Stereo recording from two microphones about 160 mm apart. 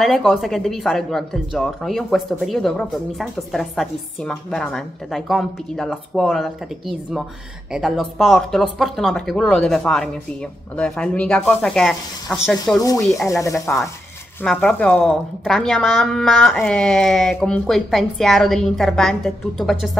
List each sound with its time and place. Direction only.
0.0 s speech: centre (ahead or behind)
13.3 s speech: 20° left (ahead or behind)
14.4 s speech: 5° left (ahead or behind)